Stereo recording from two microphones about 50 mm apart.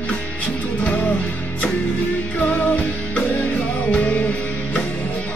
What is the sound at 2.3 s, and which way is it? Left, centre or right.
Music, left.